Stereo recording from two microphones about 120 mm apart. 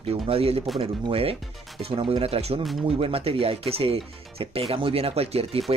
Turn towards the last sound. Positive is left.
turn(degrees=-55)  # may be behind; listen again after turning